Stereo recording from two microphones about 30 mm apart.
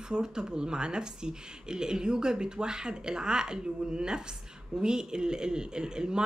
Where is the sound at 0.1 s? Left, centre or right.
Right.